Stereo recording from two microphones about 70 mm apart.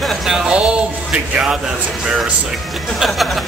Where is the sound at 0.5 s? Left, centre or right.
Centre.